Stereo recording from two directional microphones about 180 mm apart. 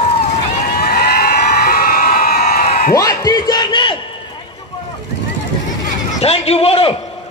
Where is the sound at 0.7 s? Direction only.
55° left (ahead or behind).